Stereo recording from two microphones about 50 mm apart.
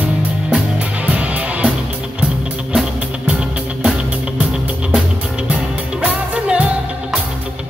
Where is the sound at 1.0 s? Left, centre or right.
Right.